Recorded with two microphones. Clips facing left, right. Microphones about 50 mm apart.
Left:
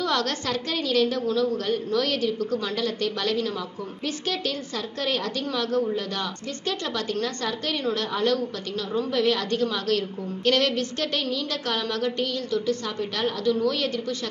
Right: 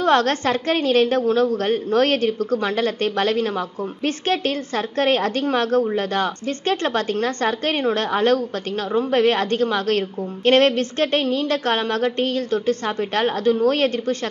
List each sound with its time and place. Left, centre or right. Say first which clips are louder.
0.0 s a woman's voice: right 8 dB; right